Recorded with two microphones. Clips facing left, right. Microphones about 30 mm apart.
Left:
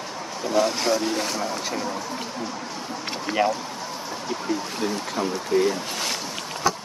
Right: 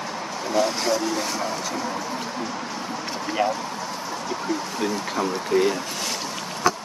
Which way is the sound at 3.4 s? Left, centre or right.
Left.